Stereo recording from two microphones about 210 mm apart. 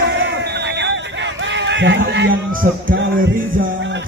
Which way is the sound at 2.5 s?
40° right (ahead or behind).